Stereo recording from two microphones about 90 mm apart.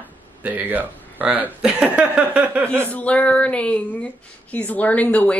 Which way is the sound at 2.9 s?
15° left (ahead or behind).